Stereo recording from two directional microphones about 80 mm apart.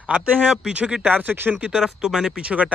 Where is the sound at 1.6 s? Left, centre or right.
Centre.